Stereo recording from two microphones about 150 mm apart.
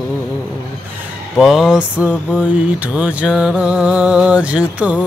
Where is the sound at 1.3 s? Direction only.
Centre (ahead or behind).